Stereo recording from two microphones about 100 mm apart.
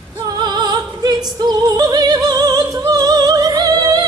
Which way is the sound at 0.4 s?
45° right (ahead or behind).